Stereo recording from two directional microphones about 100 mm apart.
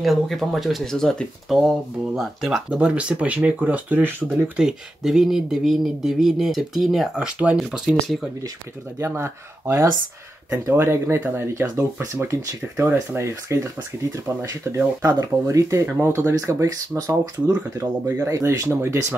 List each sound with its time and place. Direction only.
0.0 s speech: centre (ahead or behind)
2.8 s speech: 10° right (ahead or behind)
8.9 s speech: 25° right (ahead or behind)